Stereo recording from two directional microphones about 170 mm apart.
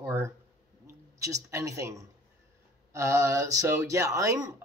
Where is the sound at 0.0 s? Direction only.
15° right (ahead or behind).